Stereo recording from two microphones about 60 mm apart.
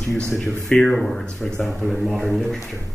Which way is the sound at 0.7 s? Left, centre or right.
Centre.